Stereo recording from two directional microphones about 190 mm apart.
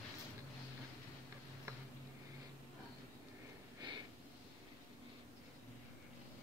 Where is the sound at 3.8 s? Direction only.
25° right (ahead or behind).